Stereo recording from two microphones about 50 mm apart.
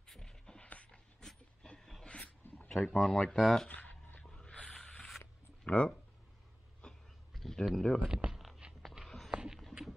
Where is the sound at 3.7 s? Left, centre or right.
Left.